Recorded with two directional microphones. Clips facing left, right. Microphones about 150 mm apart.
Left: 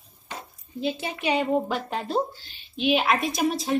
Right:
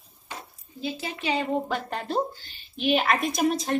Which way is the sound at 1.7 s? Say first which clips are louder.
Left 2 dB; centre (ahead or behind).